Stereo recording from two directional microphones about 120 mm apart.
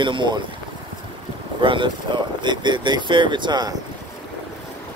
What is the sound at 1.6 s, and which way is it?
Speech, 40° right (ahead or behind).